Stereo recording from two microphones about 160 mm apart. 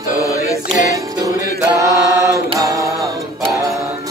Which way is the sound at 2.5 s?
20° right (ahead or behind).